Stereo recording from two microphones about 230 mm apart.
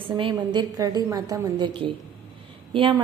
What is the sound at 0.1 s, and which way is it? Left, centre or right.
A woman's voice, centre.